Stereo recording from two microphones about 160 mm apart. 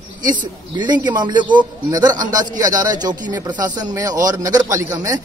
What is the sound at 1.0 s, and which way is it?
A man's voice, 25° right (ahead or behind).